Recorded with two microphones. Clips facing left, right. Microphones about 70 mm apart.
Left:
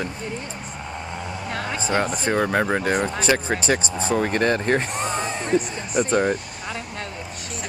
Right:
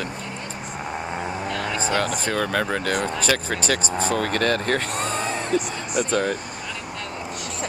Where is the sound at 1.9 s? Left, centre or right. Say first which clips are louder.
Left 4 dB; left.